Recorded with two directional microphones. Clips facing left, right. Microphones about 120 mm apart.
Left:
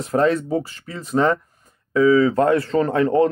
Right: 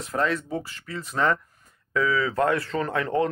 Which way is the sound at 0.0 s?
35° left (ahead or behind).